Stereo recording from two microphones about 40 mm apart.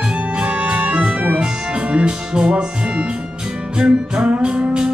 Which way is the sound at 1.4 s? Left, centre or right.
Right.